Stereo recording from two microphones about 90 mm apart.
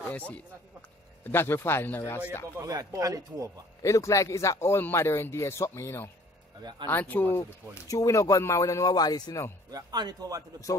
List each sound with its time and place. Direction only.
1.2 s speech: 25° left (ahead or behind)
2.6 s speech: 40° right (ahead or behind)
3.8 s speech: 35° left (ahead or behind); by 9.4 s 50° left (ahead or behind)
9.7 s speech: 45° right (ahead or behind)